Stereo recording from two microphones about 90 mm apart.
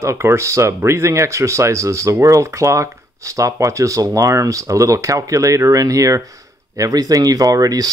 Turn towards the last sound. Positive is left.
turn(degrees=-45)  # may be behind; listen again after turning